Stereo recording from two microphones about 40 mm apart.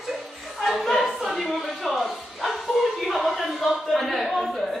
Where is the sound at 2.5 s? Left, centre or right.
Centre.